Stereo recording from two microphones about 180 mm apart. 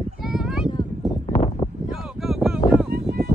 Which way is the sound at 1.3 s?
35° left (ahead or behind).